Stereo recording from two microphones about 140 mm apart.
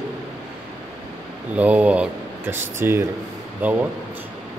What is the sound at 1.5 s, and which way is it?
Speech, 10° right (ahead or behind).